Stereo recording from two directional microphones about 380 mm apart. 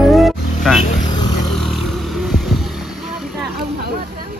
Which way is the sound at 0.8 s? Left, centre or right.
Centre.